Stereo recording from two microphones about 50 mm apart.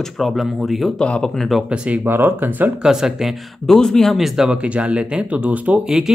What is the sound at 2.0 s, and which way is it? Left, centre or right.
Speech, right.